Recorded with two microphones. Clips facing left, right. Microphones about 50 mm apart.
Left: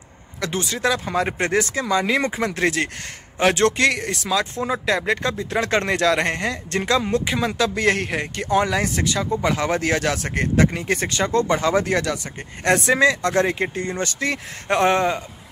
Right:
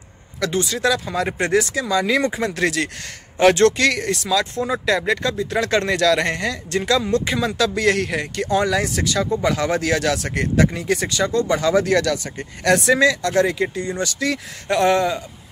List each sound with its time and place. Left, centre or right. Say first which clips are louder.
0.4 s speech: right 3 dB; left
6.7 s speech: right 2 dB; left